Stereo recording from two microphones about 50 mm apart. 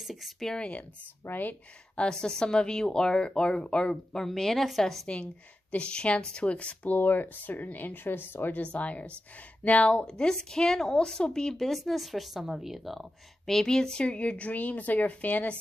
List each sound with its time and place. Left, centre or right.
0.0 s speech: centre
0.6 s speech: left
1.2 s speech: left
2.0 s speech: centre
5.0 s speech: left
8.7 s speech: left
10.0 s speech: centre
13.5 s speech: centre; by 15.5 s left